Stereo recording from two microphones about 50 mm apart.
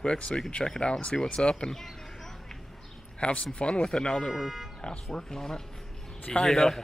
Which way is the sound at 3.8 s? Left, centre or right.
Centre.